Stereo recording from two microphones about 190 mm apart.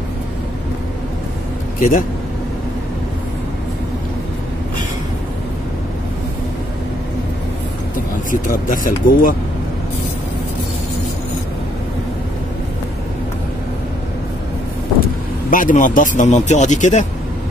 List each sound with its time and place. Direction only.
1.8 s speech: 45° left (ahead or behind)
8.3 s speech: 45° left (ahead or behind)
15.5 s speech: 45° left (ahead or behind)